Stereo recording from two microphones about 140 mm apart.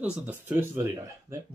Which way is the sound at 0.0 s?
10° right (ahead or behind).